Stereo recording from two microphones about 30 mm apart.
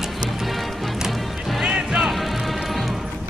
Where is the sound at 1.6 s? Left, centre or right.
Right.